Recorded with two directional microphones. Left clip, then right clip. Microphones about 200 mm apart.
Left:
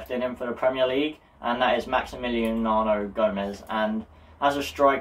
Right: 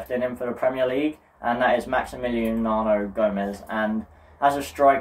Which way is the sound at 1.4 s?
15° right (ahead or behind).